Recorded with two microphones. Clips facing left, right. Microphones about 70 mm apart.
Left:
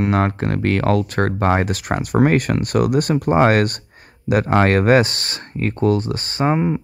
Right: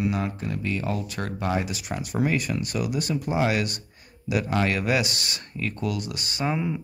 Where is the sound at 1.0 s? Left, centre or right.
Left.